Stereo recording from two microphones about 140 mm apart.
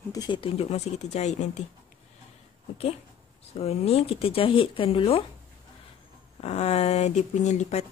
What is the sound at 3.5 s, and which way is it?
Speech, 50° left (ahead or behind).